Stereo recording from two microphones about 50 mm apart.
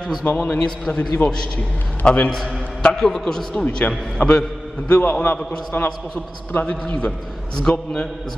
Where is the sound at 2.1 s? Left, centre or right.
Left.